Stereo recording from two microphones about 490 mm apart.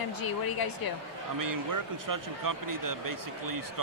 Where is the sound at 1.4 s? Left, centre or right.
Right.